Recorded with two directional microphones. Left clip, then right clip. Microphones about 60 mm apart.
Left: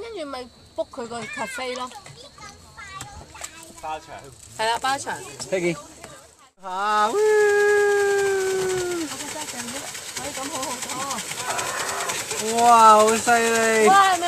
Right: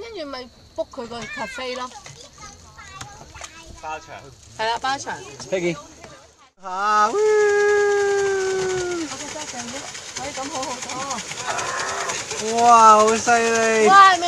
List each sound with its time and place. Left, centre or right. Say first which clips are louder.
0.0 s speech: even; right
1.2 s speech: right 1 dB; centre
1.6 s a child's voice: right 2 dB; right
3.8 s speech: even; left
4.6 s speech: even; centre
5.5 s speech: right 1 dB; right
6.6 s howl: right 3 dB; centre